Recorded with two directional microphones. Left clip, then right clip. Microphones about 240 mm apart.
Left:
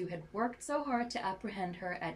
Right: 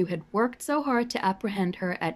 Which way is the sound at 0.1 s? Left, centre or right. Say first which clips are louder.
Right 10 dB; right.